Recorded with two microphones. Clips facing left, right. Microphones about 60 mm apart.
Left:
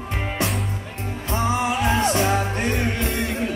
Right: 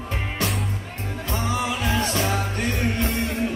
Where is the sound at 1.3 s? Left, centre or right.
Left.